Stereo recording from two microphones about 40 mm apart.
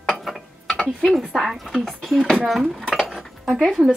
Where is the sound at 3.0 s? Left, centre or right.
Centre.